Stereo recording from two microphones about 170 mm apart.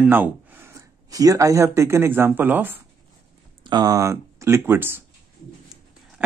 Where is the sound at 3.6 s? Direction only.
20° right (ahead or behind).